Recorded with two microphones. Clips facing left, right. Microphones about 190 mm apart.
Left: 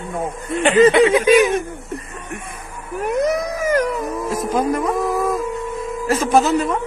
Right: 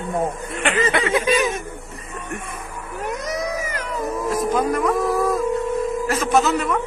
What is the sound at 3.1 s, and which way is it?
Speech, 55° left (ahead or behind).